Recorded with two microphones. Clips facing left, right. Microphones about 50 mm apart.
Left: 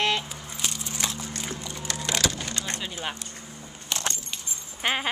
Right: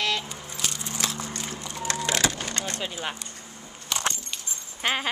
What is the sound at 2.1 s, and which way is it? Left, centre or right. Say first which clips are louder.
Vehicle: left 1 dB; right.